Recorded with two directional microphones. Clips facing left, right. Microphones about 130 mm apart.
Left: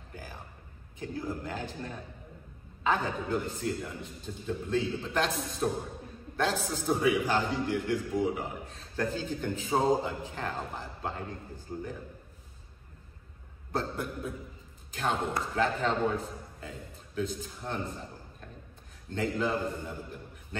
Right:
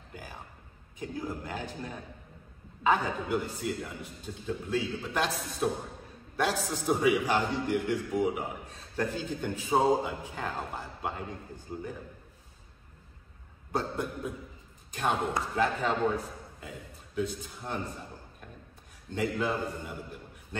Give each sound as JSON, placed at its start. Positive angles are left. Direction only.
{"t": 0.1, "sound": "music", "side_deg": -15}
{"t": 0.9, "sound": "a man's voice", "side_deg": -15}
{"t": 2.8, "sound": "a man's voice", "side_deg": -10}
{"t": 13.7, "sound": "a man's voice", "side_deg": -15}
{"t": 17.1, "sound": "a man's voice", "side_deg": -15}
{"t": 19.1, "sound": "a man's voice", "side_deg": -10}